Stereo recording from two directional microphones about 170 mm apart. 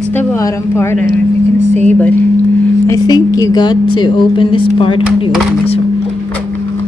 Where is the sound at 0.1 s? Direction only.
10° left (ahead or behind).